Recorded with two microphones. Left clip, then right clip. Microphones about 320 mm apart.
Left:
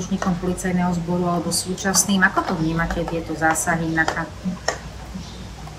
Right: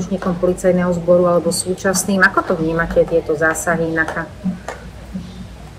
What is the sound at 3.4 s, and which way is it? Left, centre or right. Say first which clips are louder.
Speech: right 4 dB; centre.